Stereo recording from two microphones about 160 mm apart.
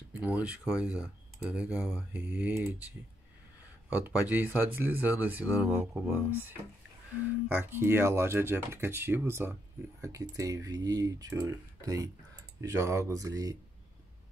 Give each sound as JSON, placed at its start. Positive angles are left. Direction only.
{"t": 0.1, "sound": "speech", "side_deg": -10}
{"t": 3.9, "sound": "speech", "side_deg": -10}
{"t": 7.5, "sound": "speech", "side_deg": -15}